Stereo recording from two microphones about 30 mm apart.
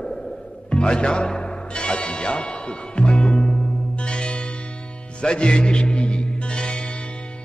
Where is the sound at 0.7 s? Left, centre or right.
Left.